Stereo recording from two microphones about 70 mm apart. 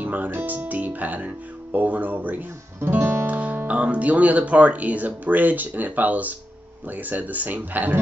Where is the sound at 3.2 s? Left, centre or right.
Right.